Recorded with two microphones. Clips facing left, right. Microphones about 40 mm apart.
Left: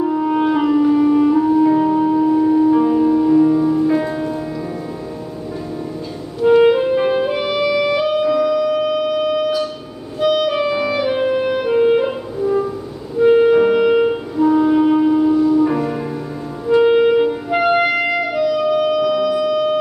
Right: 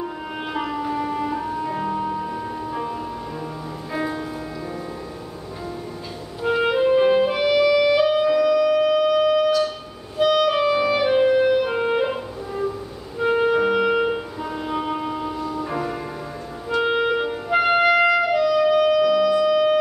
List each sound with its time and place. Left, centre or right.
0.0 s music: centre
6.4 s clarinet: centre
13.2 s music: centre
16.8 s clarinet: centre